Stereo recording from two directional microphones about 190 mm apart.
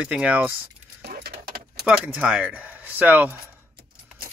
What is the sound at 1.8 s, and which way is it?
Speech, 5° right (ahead or behind).